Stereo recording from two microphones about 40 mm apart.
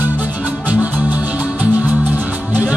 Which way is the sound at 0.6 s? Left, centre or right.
Right.